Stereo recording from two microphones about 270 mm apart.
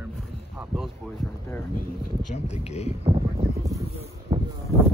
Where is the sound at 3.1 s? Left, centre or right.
Right.